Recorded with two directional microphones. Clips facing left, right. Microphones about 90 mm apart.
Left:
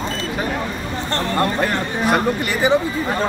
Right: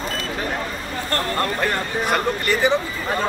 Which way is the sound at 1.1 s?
20° left (ahead or behind).